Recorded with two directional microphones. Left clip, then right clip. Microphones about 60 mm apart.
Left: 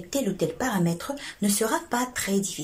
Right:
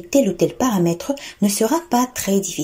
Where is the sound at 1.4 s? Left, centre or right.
Right.